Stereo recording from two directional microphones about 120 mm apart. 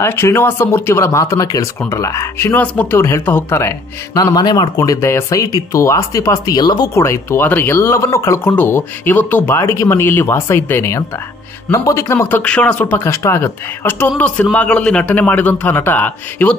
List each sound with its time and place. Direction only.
0.0 s speech: 20° left (ahead or behind)
3.0 s speech: 25° left (ahead or behind)